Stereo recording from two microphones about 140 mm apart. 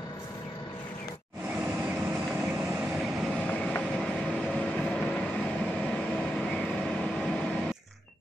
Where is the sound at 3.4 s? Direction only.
10° left (ahead or behind).